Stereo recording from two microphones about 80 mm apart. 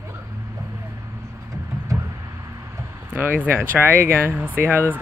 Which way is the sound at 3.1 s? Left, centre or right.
Right.